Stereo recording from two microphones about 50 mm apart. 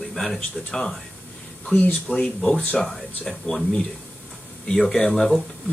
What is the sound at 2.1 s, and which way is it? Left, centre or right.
Speech, centre.